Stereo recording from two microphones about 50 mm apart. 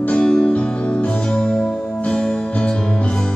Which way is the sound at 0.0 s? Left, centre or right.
Centre.